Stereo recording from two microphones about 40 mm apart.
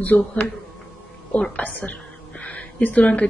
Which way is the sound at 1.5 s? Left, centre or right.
Left.